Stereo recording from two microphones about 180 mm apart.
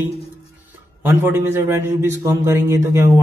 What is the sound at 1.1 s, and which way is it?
A man's voice, 15° right (ahead or behind).